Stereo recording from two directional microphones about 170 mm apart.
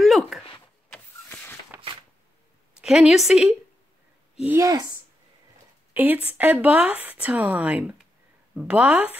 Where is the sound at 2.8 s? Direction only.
5° right (ahead or behind).